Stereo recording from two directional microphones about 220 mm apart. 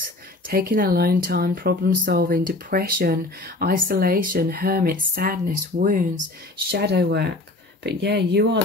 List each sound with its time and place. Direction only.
0.5 s speech: 40° right (ahead or behind)